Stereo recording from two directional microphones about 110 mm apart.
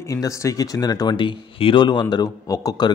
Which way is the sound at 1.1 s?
50° left (ahead or behind).